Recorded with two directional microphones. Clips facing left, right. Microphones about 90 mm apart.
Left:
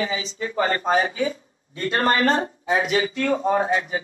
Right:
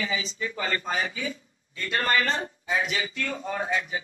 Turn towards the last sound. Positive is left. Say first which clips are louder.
# left 8 dB
turn(degrees=30)  # may be behind; listen again after turning